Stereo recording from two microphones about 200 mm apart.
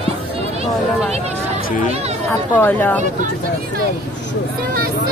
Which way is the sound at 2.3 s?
10° left (ahead or behind).